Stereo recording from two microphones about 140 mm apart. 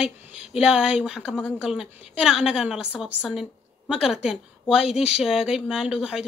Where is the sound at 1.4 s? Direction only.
15° left (ahead or behind).